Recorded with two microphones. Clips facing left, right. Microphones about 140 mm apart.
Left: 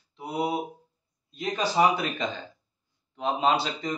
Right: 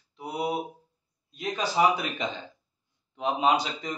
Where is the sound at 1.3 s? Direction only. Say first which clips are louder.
Left 2 dB; 5° right (ahead or behind).